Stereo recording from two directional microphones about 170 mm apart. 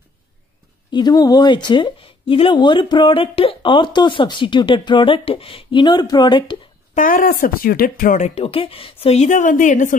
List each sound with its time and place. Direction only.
0.9 s a woman's voice: 25° left (ahead or behind)
7.0 s speech: 50° left (ahead or behind)
8.4 s a woman's voice: 35° left (ahead or behind); by 9.9 s 50° left (ahead or behind)